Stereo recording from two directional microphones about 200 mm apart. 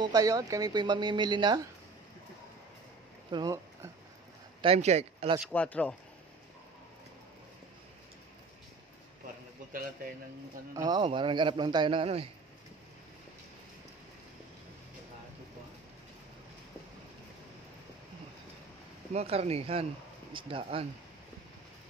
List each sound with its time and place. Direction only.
0.0 s speech: 15° right (ahead or behind)
3.3 s a sound: 20° right (ahead or behind)
4.6 s speech: 30° right (ahead or behind)
5.5 s speech: 5° left (ahead or behind)
9.7 s speech: 45° right (ahead or behind)
10.7 s speech: 20° right (ahead or behind)
19.1 s speech: 30° right (ahead or behind)